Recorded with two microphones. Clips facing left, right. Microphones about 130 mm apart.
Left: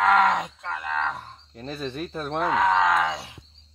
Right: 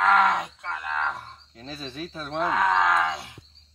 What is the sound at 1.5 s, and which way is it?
Speech, 55° left (ahead or behind).